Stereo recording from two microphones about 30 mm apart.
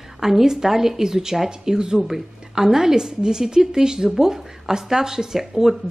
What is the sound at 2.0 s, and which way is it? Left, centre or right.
Speech, centre.